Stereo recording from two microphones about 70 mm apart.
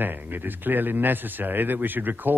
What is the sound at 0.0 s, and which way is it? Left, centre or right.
Speech, right.